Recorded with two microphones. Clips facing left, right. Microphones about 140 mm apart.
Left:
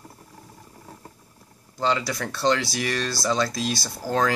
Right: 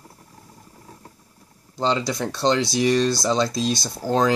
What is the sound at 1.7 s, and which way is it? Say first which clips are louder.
Speech: right 2 dB; 25° right (ahead or behind).